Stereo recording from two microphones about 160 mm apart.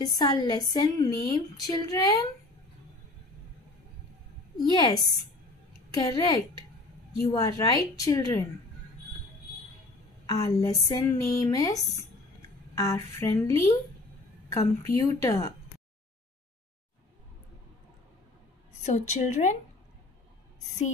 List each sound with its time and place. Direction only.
0.0 s a woman's voice: 25° left (ahead or behind)
4.7 s a woman's voice: 25° left (ahead or behind)
10.2 s a woman's voice: 20° left (ahead or behind)
14.6 s a woman's voice: 20° left (ahead or behind)
18.8 s a woman's voice: 45° left (ahead or behind)